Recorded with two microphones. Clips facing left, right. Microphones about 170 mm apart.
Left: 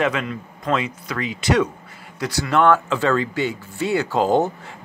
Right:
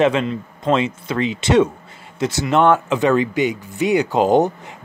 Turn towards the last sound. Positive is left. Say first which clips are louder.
# right 3 dB
turn(degrees=-20)  # may be behind; listen again after turning